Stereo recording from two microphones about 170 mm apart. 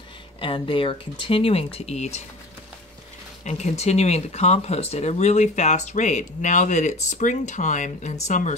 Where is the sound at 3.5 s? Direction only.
40° left (ahead or behind).